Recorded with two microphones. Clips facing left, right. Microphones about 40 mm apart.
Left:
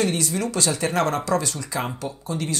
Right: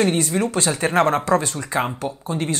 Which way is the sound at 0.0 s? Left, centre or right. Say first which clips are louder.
Right 4 dB; right.